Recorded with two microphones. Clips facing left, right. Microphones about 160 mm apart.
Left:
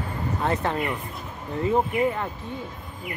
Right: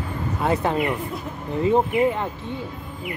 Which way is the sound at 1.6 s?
20° right (ahead or behind).